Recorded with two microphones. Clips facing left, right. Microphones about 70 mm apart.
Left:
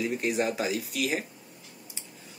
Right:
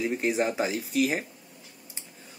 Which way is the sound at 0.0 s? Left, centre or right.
Right.